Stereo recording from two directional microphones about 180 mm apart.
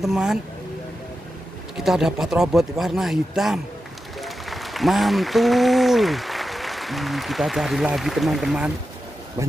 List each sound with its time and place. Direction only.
0.0 s speech: centre (ahead or behind)
1.8 s speech: 5° right (ahead or behind)
9.4 s speech: 15° right (ahead or behind)